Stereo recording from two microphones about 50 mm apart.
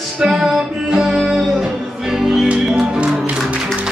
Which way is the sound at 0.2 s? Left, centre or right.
Centre.